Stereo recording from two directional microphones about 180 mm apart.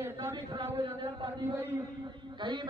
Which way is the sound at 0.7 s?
35° right (ahead or behind).